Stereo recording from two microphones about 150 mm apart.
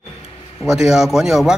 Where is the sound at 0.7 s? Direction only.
5° right (ahead or behind).